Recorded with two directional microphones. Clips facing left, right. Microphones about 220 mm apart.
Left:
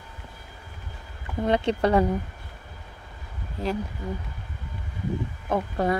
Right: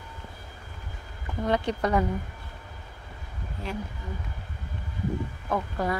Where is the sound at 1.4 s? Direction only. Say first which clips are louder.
Left 4 dB; 25° left (ahead or behind).